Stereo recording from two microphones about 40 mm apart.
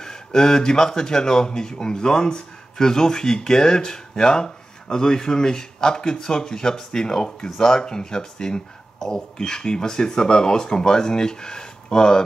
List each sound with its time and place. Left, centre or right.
0.0 s speech: centre